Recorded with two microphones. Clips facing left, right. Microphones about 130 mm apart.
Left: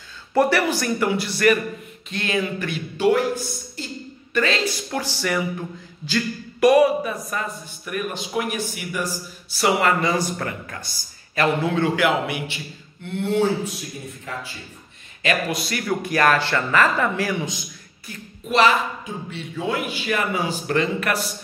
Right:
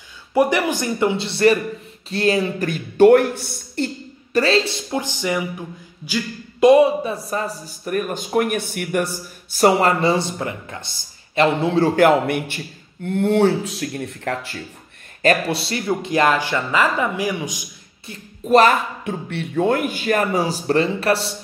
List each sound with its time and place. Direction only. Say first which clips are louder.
0.3 s a man's voice: right 1 dB; 15° right (ahead or behind); by 3.9 s 60° right (ahead or behind)
4.3 s speech: right 5 dB; 35° right (ahead or behind); by 5.5 s 20° right (ahead or behind)
6.6 s speech: right 3 dB; 25° right (ahead or behind); by 9.6 s 60° right (ahead or behind)
9.6 s speech: right 4 dB; 40° right (ahead or behind)
13.7 s speech: right 6 dB; 75° right (ahead or behind)
15.2 s speech: right 5 dB; 35° right (ahead or behind); by 17.6 s 15° right (ahead or behind)
18.5 s a man's voice: right 4 dB; 50° right (ahead or behind); by 21.4 s 30° right (ahead or behind)